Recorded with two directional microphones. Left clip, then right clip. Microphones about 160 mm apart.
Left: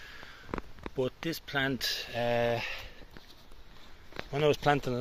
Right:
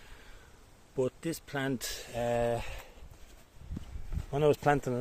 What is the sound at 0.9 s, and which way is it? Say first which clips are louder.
Speech: even; 10° right (ahead or behind).